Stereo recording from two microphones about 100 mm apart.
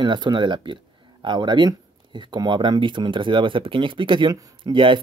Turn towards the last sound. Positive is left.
turn(degrees=-60)  # may be behind; listen again after turning